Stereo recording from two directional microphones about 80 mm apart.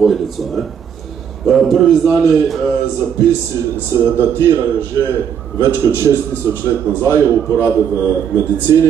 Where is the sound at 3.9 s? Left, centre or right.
Right.